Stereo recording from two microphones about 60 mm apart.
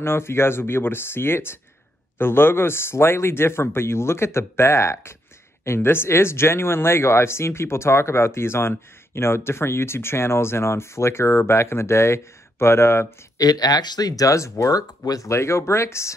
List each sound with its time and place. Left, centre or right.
0.0 s speech: left
13.4 s speech: left